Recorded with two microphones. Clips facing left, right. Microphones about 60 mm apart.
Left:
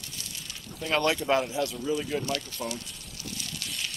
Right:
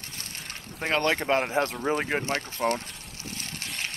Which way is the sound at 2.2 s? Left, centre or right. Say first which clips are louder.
Right 5 dB; right.